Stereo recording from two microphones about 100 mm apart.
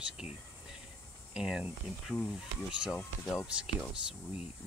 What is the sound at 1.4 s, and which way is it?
Speech, 10° right (ahead or behind).